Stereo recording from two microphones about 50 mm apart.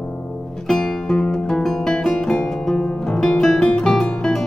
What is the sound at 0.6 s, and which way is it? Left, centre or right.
Music, centre.